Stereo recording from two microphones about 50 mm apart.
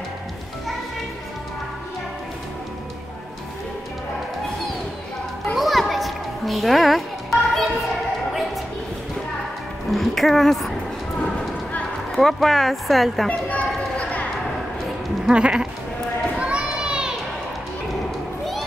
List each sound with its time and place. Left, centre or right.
5.6 s children playing: centre
9.8 s music: centre
12.2 s speech: centre
13.3 s speech: left
15.2 s sheep: right
16.3 s children playing: right
16.8 s a sound: centre